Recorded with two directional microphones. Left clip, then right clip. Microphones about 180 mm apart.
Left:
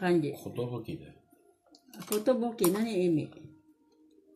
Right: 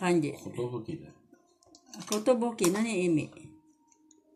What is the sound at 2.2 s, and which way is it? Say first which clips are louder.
Speech: right 2 dB; 15° right (ahead or behind).